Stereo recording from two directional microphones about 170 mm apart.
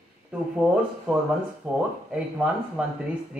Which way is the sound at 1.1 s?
5° right (ahead or behind).